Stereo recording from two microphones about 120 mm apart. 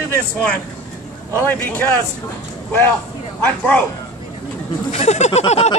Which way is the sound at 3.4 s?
15° left (ahead or behind).